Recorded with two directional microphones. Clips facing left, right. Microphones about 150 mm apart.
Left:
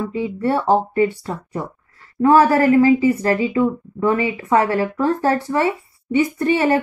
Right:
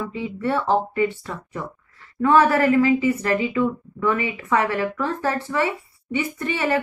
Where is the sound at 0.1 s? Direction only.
40° left (ahead or behind).